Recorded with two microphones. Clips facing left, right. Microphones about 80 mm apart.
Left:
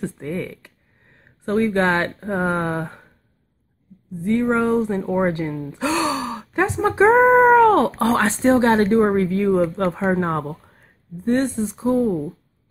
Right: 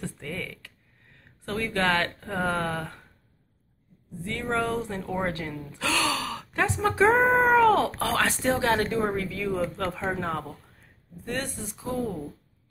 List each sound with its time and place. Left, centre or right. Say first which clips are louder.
0.0 s speech: left 8 dB; left
0.5 s a sound: left 6 dB; left
1.4 s speech: left 8 dB; left
4.2 s speech: left 9 dB; left
7.1 s speech: left 9 dB; left
8.0 s speech: left 7 dB; left
11.2 s speech: left 13 dB; left